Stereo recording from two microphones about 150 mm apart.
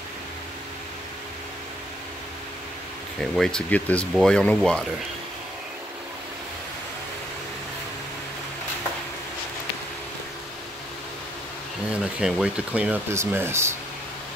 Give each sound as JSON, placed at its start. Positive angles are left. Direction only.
{"t": 3.2, "sound": "speech", "side_deg": 5}
{"t": 11.9, "sound": "speech", "side_deg": -5}